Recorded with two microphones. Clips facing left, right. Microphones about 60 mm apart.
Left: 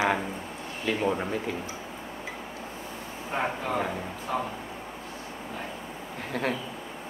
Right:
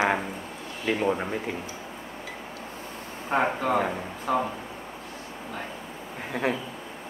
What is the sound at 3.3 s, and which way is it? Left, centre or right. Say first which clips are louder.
Speech: right 5 dB; right.